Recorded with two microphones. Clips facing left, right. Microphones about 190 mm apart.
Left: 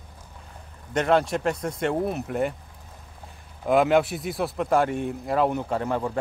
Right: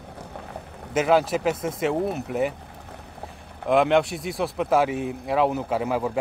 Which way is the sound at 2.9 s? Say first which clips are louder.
Right 8 dB; 70° right (ahead or behind).